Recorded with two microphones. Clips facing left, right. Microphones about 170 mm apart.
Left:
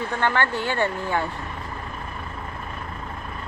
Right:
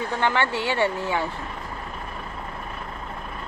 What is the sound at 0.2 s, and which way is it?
Speech, 15° right (ahead or behind).